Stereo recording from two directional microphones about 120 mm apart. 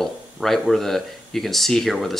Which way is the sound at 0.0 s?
Centre (ahead or behind).